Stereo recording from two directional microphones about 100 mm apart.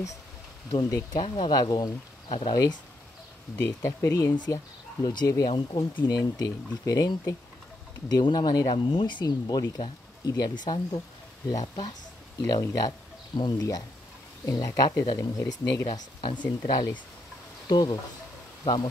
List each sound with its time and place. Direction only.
0.7 s speech: 35° left (ahead or behind)
2.2 s speech: 55° left (ahead or behind)
2.5 s speech: 40° left (ahead or behind)
5.5 s speech: 60° left (ahead or behind); by 8.7 s 45° left (ahead or behind)
8.7 s speech: 55° left (ahead or behind)